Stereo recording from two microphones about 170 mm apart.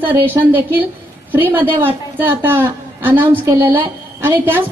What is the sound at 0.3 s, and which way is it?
Speech, 10° right (ahead or behind).